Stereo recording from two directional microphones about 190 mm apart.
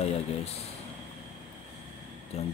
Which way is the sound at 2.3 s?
35° left (ahead or behind).